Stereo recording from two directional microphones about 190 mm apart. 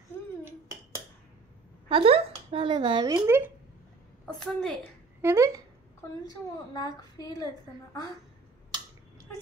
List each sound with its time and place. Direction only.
0.5 s a sound: 15° right (ahead or behind)
1.9 s speech: 30° right (ahead or behind); by 3.5 s 15° right (ahead or behind)
4.4 s a woman's voice: 5° left (ahead or behind)
5.2 s speech: 15° right (ahead or behind)
6.2 s a woman's voice: 20° left (ahead or behind)